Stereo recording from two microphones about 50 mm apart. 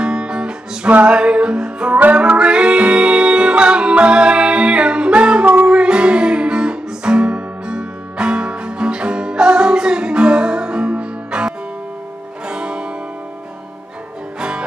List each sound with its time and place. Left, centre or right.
0.0 s music: centre
12.4 s music: centre